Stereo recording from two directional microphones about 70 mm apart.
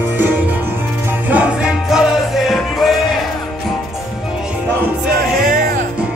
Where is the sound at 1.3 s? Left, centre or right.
Centre.